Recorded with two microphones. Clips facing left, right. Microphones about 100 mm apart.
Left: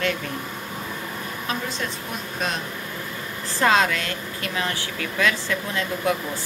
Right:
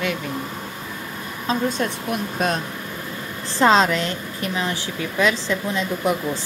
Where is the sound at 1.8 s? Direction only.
50° right (ahead or behind).